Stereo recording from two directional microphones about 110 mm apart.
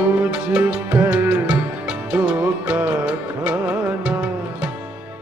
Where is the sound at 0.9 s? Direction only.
20° right (ahead or behind).